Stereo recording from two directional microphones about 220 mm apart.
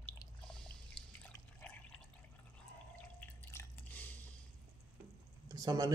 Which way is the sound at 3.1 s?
10° left (ahead or behind).